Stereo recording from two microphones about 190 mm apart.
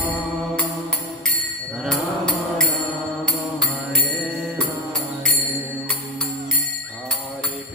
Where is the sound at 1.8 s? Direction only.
5° left (ahead or behind).